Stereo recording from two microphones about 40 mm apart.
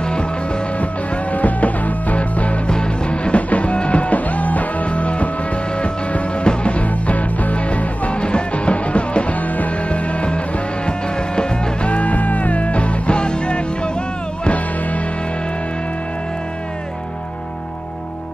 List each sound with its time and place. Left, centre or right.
0.0 s music: left
0.7 s music: left
2.7 s music: left
14.4 s music: left